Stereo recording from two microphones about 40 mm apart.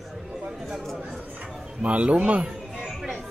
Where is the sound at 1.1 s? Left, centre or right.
Right.